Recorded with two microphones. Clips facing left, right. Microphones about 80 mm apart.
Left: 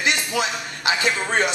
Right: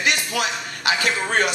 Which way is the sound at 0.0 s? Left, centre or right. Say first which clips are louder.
Even; left.